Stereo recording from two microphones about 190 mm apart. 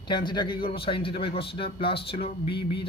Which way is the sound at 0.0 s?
25° left (ahead or behind).